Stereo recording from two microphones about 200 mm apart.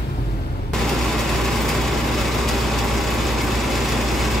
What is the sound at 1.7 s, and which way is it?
Vehicle, centre (ahead or behind).